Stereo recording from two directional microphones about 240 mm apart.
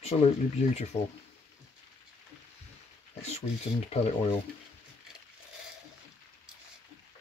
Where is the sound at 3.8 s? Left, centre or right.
Left.